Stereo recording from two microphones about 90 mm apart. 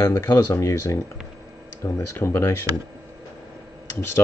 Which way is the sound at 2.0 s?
25° left (ahead or behind).